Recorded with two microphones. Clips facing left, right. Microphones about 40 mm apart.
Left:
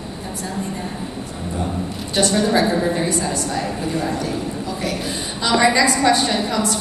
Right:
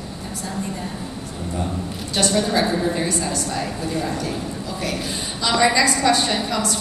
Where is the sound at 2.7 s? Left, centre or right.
Centre.